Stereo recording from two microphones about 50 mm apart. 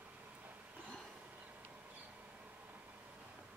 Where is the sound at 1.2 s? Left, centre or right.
Right.